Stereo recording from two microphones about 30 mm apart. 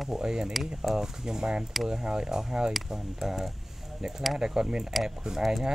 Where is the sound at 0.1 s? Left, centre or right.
Right.